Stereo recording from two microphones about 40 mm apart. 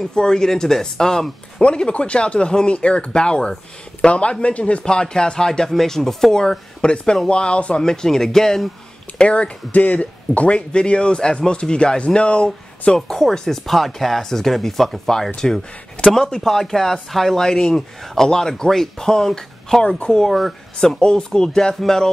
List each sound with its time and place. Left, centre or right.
0.1 s speech: centre
1.9 s speech: left
4.8 s speech: left
6.8 s speech: left
7.8 s speech: centre
9.2 s speech: left
10.7 s speech: left
13.1 s speech: centre
21.0 s speech: left